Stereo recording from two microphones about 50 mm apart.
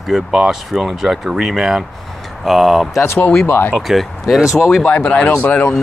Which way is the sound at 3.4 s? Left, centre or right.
Left.